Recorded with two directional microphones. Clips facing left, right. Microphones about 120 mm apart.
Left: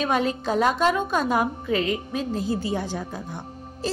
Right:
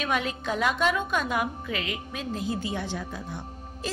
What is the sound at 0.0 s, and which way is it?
A woman's voice, 35° left (ahead or behind).